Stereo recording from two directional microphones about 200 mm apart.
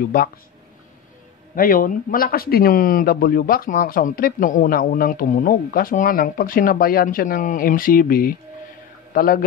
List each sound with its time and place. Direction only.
1.5 s a man's voice: 45° left (ahead or behind)